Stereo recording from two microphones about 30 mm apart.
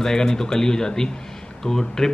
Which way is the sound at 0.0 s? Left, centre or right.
Centre.